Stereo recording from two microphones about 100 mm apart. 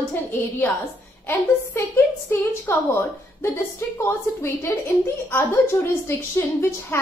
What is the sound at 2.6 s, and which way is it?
A woman's voice, 25° left (ahead or behind).